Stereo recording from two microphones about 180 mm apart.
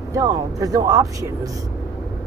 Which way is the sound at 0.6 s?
20° right (ahead or behind).